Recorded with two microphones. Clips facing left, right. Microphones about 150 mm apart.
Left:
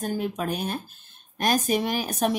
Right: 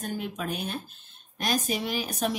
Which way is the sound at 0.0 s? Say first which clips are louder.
Left 5 dB; 40° left (ahead or behind).